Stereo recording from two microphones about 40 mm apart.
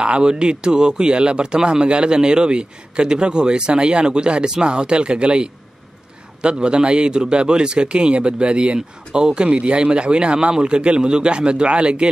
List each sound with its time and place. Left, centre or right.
0.0 s a man's voice: right